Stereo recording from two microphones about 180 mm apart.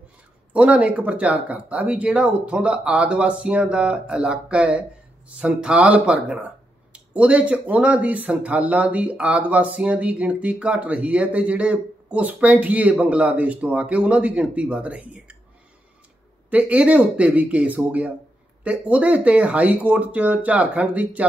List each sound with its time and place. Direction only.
0.5 s speech: 5° right (ahead or behind)
16.4 s speech: 5° right (ahead or behind)